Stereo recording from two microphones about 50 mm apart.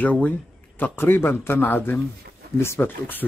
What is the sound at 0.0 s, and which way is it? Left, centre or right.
Speech, left.